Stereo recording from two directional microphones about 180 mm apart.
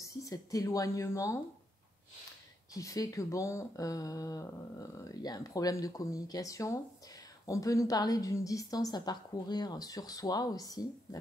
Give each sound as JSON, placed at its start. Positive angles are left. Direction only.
{"t": 0.0, "sound": "speech", "side_deg": 20}
{"t": 2.7, "sound": "speech", "side_deg": 20}